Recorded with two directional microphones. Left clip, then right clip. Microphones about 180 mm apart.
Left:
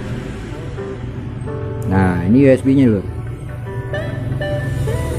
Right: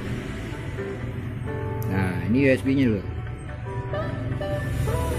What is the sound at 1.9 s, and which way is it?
Speech, 20° left (ahead or behind).